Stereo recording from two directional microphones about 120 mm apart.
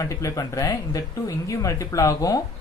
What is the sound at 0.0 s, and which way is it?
Speech, 25° left (ahead or behind).